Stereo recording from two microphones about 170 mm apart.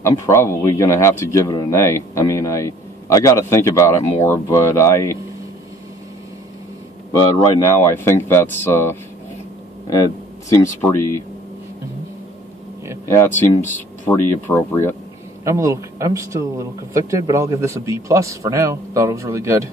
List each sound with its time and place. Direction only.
0.3 s speech: 15° left (ahead or behind)
7.3 s speech: 20° left (ahead or behind)
13.1 s speech: 15° left (ahead or behind)
15.4 s a man's voice: 20° right (ahead or behind)